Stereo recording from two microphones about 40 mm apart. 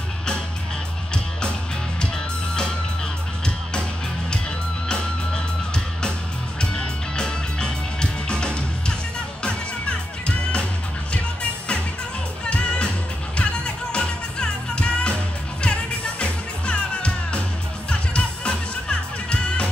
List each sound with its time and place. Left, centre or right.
4.8 s music: left
6.6 s music: left
12.4 s music: left